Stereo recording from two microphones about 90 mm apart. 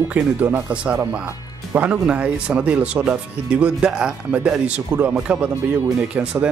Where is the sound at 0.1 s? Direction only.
20° right (ahead or behind).